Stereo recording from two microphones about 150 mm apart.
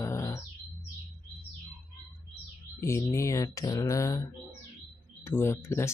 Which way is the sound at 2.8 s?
20° left (ahead or behind).